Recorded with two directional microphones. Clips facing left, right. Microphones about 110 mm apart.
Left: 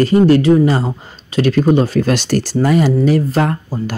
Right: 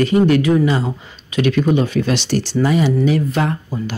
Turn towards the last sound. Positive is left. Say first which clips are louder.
# left 3 dB
turn(degrees=40)  # may be behind; listen again after turning